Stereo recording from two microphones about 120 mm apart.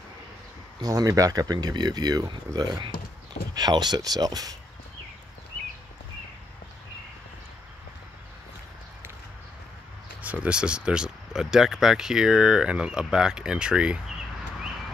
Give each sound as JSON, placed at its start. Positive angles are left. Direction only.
{"t": 0.7, "sound": "speech", "side_deg": -30}
{"t": 10.2, "sound": "speech", "side_deg": -10}